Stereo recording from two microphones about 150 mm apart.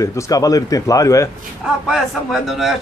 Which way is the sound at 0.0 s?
20° left (ahead or behind).